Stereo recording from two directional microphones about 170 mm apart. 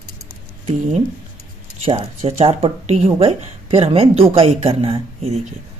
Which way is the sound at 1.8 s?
35° right (ahead or behind).